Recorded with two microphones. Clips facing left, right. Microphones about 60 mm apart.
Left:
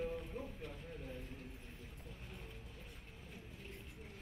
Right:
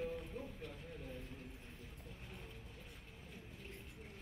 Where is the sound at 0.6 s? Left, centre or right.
Left.